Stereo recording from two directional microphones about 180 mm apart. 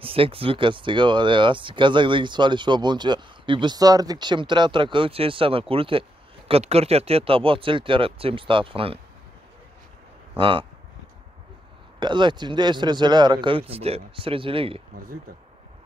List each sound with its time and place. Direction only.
0.0 s speech: 30° right (ahead or behind)
10.3 s speech: 25° right (ahead or behind)
12.0 s speech: 25° right (ahead or behind)